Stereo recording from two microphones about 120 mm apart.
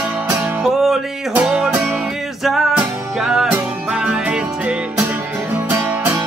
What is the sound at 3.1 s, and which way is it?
Music, 5° right (ahead or behind).